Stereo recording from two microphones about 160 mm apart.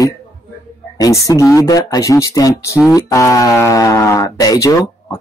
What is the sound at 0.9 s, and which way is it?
A man's voice, 20° left (ahead or behind).